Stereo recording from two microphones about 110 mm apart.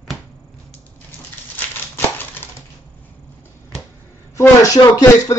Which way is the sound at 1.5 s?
20° left (ahead or behind).